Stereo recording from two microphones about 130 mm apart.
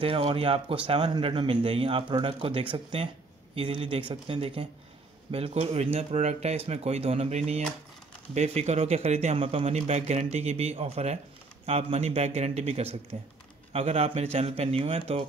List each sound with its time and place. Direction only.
0.0 s speech: 45° right (ahead or behind)